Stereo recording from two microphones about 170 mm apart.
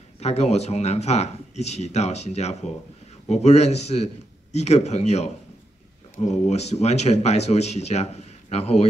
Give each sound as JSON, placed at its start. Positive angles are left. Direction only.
{"t": 0.2, "sound": "speech", "side_deg": 40}